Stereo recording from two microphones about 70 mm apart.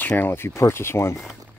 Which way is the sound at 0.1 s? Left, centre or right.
Left.